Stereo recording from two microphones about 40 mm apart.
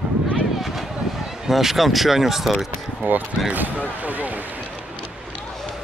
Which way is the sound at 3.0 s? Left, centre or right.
Right.